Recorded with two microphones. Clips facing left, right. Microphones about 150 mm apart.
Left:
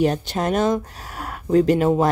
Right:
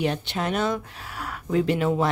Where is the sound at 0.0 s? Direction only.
40° left (ahead or behind).